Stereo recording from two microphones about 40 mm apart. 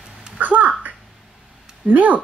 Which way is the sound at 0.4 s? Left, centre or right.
Right.